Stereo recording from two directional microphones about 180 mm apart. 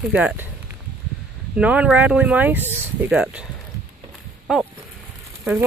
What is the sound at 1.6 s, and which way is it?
Speech, 5° right (ahead or behind).